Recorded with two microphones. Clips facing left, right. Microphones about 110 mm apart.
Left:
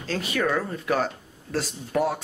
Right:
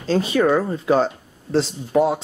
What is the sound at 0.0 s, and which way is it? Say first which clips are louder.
Speech: right 8 dB; 30° right (ahead or behind).